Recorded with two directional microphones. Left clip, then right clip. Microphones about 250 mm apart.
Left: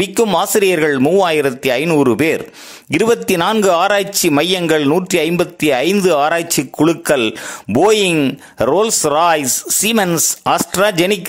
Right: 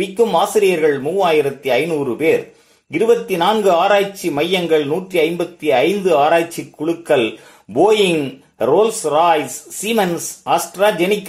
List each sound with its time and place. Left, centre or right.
0.4 s a man's voice: left